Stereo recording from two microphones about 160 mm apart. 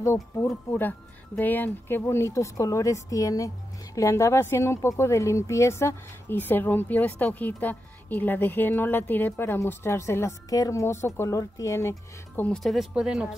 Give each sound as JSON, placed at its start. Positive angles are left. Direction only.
{"t": 0.0, "sound": "speech", "side_deg": 15}
{"t": 12.4, "sound": "speech", "side_deg": 5}